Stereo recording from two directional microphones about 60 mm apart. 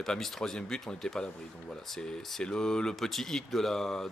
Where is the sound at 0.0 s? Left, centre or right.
Centre.